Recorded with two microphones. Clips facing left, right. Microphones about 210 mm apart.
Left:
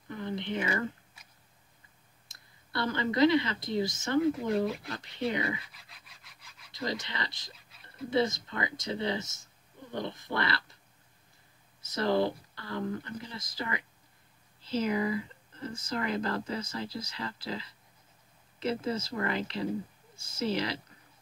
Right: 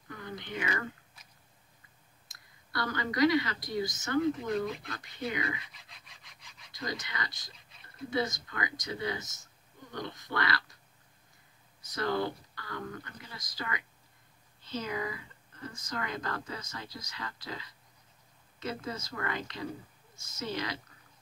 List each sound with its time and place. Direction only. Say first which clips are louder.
0.1 s speech: left 6 dB; 25° left (ahead or behind)
2.7 s speech: left 4 dB; 25° left (ahead or behind)
4.2 s speech: left 2 dB; 5° left (ahead or behind)
5.7 s rub: even; 5° left (ahead or behind)
6.8 s speech: left 3 dB; 25° left (ahead or behind)
11.8 s speech: left 4 dB; 25° left (ahead or behind)